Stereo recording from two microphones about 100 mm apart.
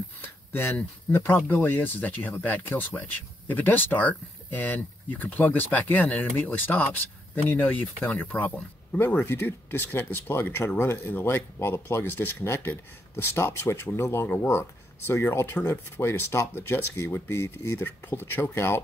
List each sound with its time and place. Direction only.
0.2 s speech: 20° left (ahead or behind)